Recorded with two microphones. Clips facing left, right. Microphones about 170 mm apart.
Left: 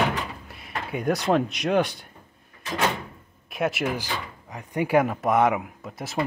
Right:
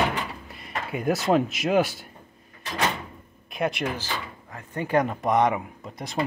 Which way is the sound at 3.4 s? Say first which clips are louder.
Left 1 dB; centre (ahead or behind).